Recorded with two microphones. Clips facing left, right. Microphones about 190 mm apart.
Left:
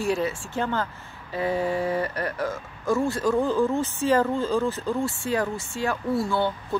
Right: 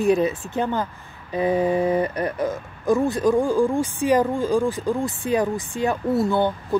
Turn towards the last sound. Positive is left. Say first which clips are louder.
# right 4 dB
turn(degrees=-20)  # may be behind; listen again after turning